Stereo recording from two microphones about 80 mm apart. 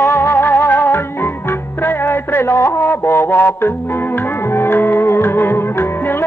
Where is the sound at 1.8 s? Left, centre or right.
Left.